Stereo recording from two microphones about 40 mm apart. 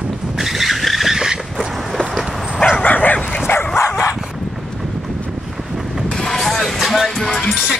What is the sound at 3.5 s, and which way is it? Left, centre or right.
Dog, left.